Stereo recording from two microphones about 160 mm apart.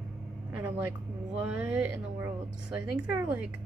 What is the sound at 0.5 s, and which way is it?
A woman's voice, 10° right (ahead or behind).